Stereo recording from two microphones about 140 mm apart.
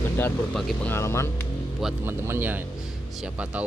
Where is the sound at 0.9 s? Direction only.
20° left (ahead or behind).